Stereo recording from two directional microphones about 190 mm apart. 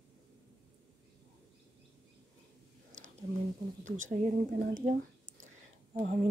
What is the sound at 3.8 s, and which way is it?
A woman's voice, 40° right (ahead or behind).